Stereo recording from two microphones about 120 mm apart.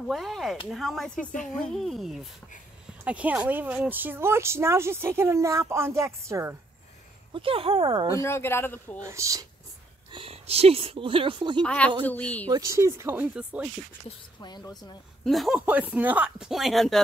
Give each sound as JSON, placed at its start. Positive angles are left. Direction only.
{"t": 0.1, "sound": "speech", "side_deg": 0}
{"t": 1.3, "sound": "a woman's voice", "side_deg": 90}
{"t": 1.6, "sound": "speech", "side_deg": 0}
{"t": 7.3, "sound": "speech", "side_deg": -50}
{"t": 8.2, "sound": "a man's voice", "side_deg": 20}
{"t": 9.0, "sound": "speech", "side_deg": -25}
{"t": 10.1, "sound": "speech", "side_deg": -55}
{"t": 11.6, "sound": "speech", "side_deg": 10}
{"t": 12.4, "sound": "speech", "side_deg": -30}
{"t": 14.0, "sound": "speech", "side_deg": 35}
{"t": 15.2, "sound": "speech", "side_deg": 0}
{"t": 15.6, "sound": "speech", "side_deg": -15}